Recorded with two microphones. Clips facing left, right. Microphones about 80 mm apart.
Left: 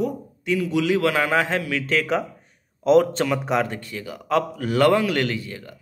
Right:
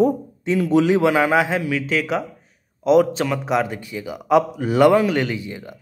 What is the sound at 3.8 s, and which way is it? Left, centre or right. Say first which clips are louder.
A man's voice: right 4 dB; centre.